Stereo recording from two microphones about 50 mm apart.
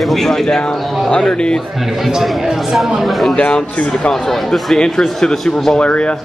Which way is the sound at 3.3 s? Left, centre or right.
Centre.